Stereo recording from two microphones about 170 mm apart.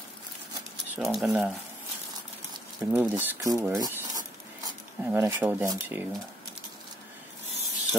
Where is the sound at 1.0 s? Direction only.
Centre (ahead or behind).